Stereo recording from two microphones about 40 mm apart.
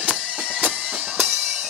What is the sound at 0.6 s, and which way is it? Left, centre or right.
Music, right.